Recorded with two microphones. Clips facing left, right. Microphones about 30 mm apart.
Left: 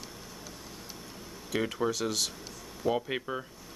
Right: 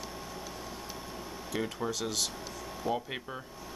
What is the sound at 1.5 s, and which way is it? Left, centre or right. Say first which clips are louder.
Speech: left 4 dB; centre.